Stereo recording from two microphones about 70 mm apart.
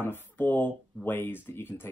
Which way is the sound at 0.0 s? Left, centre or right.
Left.